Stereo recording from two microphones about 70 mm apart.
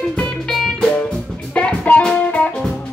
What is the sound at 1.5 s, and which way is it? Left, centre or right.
Music, left.